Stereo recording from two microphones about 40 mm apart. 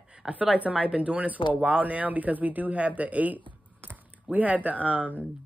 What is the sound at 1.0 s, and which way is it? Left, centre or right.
Speech, right.